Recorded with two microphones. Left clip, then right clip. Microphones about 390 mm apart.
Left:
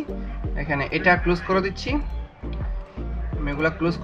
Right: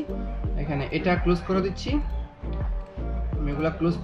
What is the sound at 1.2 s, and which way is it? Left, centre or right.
Speech, left.